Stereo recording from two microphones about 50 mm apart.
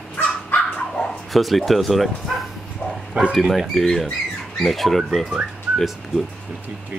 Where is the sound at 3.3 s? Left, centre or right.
Centre.